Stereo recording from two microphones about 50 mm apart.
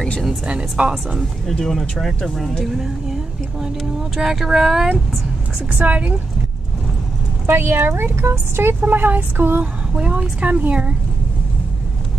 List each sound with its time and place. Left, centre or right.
0.5 s a woman's voice: centre
1.5 s a woman's voice: centre
5.7 s child singing: right
7.4 s speech: right
8.8 s child singing: right
9.9 s speech: right